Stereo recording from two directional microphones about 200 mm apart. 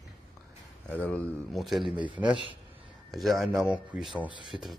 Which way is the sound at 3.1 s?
Centre (ahead or behind).